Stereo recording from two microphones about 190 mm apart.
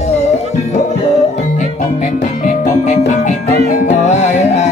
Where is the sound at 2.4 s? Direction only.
40° left (ahead or behind).